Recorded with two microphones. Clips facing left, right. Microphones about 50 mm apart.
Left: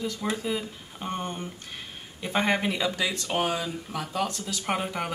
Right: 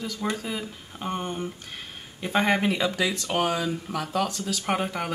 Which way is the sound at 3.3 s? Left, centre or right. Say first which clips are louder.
Right 1 dB; centre.